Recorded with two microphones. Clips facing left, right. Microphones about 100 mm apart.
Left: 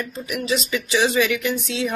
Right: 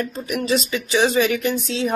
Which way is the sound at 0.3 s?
35° right (ahead or behind).